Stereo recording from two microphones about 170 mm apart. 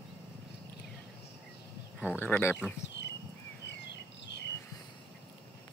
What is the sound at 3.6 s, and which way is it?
Bird, 90° left.